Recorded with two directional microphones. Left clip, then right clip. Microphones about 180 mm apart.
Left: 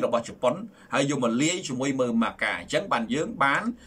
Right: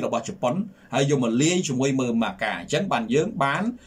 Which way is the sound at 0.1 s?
20° right (ahead or behind).